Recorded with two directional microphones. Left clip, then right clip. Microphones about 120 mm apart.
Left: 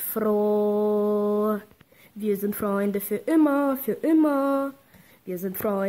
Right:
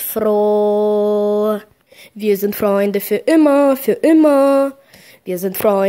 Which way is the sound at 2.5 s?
30° right (ahead or behind).